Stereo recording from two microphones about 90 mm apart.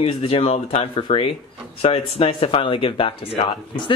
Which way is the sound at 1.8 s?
90° left.